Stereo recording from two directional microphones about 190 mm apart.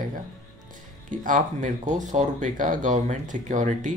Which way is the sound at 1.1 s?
40° right (ahead or behind).